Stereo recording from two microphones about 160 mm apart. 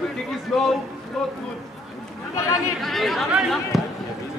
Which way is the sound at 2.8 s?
Centre (ahead or behind).